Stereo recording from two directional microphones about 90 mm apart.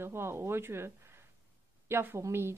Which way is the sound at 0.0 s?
30° right (ahead or behind).